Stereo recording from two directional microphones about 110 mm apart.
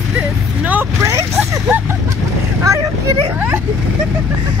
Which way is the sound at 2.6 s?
30° right (ahead or behind).